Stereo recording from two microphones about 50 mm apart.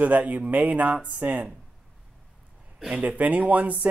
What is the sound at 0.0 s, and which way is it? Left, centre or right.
Speech, right.